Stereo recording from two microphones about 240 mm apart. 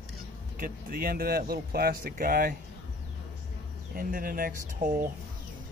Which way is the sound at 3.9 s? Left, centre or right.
Right.